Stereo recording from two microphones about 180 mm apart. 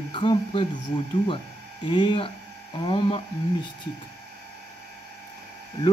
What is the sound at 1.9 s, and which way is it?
Speech, 25° left (ahead or behind).